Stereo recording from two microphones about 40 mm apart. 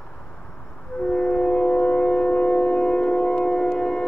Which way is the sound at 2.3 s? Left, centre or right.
Left.